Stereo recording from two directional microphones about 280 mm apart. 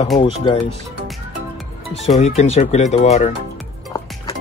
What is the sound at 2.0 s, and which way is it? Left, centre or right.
Speech, left.